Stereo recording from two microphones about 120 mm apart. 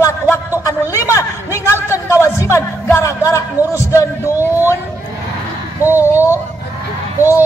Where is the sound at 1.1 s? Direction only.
25° left (ahead or behind).